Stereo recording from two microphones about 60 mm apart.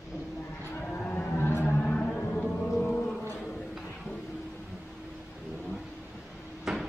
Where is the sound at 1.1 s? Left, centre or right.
Left.